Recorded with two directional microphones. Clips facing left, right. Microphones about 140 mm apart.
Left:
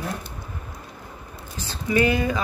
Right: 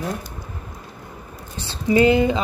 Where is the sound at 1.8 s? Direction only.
25° right (ahead or behind).